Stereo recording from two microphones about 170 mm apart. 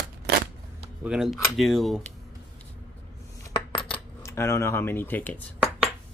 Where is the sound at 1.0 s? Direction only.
5° right (ahead or behind).